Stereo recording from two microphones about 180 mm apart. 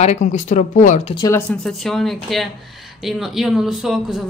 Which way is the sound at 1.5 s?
5° left (ahead or behind).